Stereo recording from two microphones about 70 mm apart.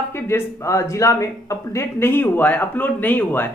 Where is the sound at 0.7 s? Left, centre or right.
Left.